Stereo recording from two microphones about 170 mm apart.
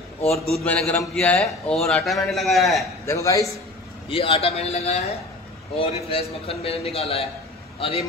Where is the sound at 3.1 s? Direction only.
20° left (ahead or behind).